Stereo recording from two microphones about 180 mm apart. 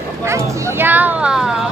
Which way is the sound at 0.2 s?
15° right (ahead or behind).